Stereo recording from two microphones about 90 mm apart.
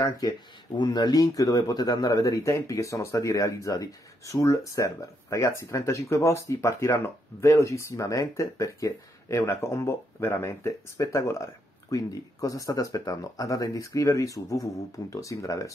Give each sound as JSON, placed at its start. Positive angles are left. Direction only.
{"t": 0.7, "sound": "speech", "side_deg": 50}